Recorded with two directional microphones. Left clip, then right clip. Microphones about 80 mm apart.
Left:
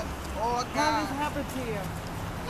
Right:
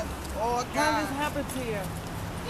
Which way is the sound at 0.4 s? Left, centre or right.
Right.